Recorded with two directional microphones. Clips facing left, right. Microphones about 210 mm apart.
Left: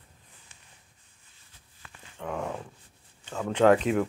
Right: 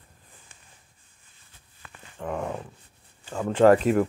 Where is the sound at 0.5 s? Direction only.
50° right (ahead or behind).